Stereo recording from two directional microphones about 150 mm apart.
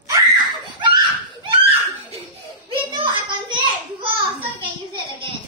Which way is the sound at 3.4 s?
30° right (ahead or behind).